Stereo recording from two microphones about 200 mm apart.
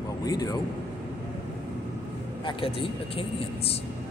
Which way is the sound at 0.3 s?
20° left (ahead or behind).